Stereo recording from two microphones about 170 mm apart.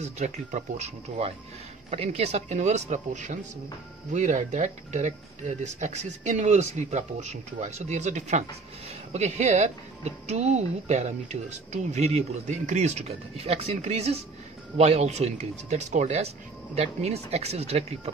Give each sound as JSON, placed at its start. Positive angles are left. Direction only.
{"t": 0.0, "sound": "speech", "side_deg": -45}